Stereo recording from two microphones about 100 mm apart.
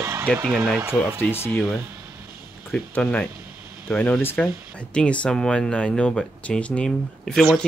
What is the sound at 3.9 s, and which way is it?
Speech, 20° left (ahead or behind).